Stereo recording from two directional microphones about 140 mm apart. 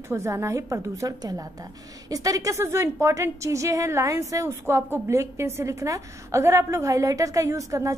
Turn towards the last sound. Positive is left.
turn(degrees=-25)  # may be behind; listen again after turning